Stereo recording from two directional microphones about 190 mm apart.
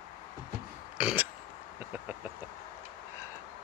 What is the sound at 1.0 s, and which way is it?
Burping, 5° right (ahead or behind).